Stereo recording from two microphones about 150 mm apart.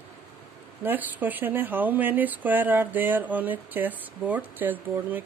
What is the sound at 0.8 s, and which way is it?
Speech, 10° right (ahead or behind).